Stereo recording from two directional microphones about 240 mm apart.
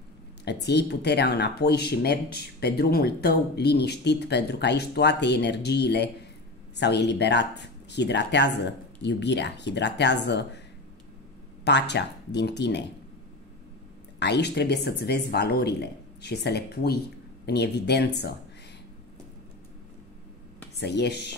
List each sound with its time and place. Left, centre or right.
0.5 s speech: left
11.6 s speech: left
14.2 s speech: left
20.8 s speech: left